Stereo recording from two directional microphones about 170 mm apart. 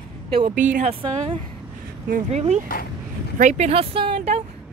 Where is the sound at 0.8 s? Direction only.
30° right (ahead or behind).